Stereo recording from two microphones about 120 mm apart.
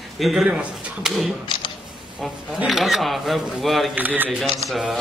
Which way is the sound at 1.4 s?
45° left (ahead or behind).